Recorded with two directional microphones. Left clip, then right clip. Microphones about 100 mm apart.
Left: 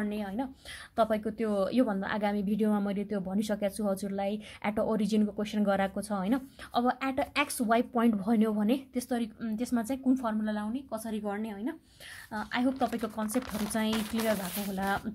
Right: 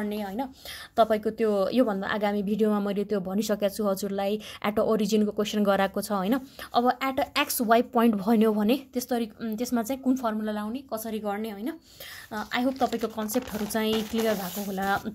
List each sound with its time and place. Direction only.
0.0 s a woman's voice: 15° right (ahead or behind)